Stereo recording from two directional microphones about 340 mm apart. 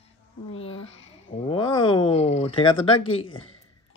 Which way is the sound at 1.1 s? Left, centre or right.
Centre.